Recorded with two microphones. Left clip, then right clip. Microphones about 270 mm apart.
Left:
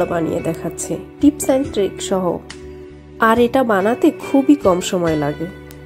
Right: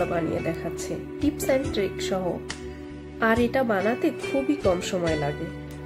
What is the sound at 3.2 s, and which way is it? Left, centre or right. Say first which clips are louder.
Speech: left 9 dB; centre.